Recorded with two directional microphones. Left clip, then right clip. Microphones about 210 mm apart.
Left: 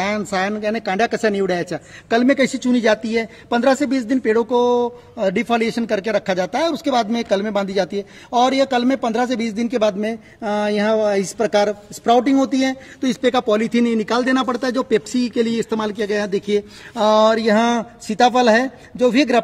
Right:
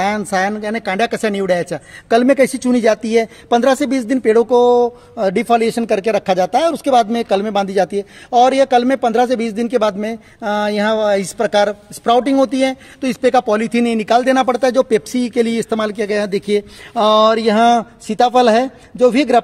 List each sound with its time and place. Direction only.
0.0 s speech: 55° right (ahead or behind)
17.0 s a man's voice: 35° right (ahead or behind)